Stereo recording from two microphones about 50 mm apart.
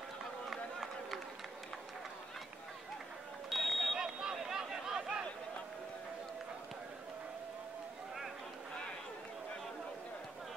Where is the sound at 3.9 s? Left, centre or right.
Centre.